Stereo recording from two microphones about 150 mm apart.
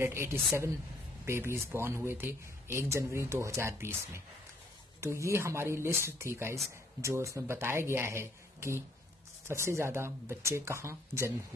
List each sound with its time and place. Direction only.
0.0 s speech: 15° right (ahead or behind)